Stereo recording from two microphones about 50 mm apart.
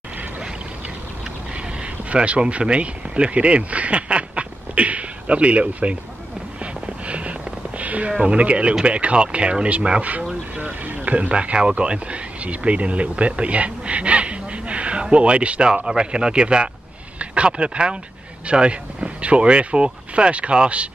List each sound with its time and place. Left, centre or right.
2.0 s speech: right
6.6 s a sound: right
8.1 s speech: centre